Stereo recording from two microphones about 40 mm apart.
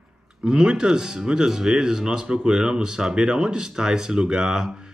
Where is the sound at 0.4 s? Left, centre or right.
Right.